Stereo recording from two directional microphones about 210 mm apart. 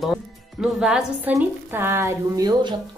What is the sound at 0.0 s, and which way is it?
Speech, centre (ahead or behind).